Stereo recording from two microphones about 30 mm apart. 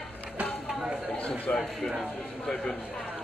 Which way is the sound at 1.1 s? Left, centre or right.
Left.